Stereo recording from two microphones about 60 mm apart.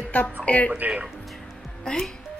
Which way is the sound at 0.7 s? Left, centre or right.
Right.